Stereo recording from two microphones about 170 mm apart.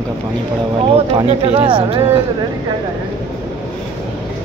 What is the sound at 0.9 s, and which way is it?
Speech, 35° right (ahead or behind).